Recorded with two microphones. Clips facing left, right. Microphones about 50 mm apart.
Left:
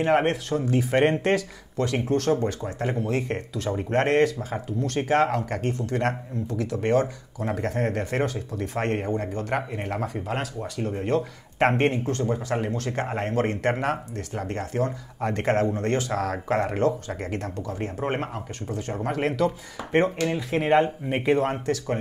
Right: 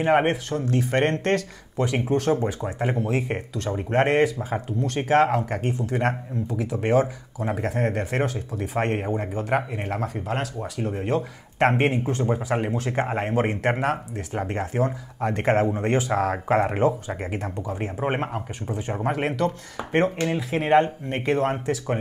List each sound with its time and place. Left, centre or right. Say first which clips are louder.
0.0 s speech: right 1 dB; centre
1.8 s speech: right 1 dB; centre
12.2 s speech: right 2 dB; centre
14.3 s speech: right 3 dB; centre
19.8 s speech: right 3 dB; right
20.2 s speech: right 1 dB; centre